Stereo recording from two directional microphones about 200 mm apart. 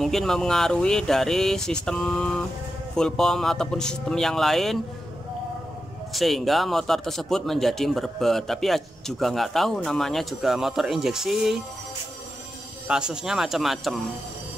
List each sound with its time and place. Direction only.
0.0 s a man's voice: centre (ahead or behind)
6.1 s a man's voice: centre (ahead or behind)
12.8 s a man's voice: 5° right (ahead or behind)